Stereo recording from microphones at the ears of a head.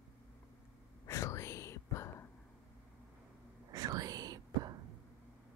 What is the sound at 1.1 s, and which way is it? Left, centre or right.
Whispering, left.